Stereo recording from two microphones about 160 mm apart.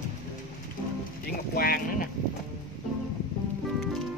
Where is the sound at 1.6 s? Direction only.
70° left (ahead or behind).